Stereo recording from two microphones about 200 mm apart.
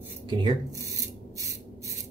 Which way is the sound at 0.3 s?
25° right (ahead or behind).